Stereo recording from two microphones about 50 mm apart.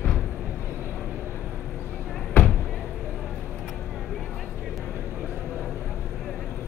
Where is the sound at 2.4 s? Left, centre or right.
Left.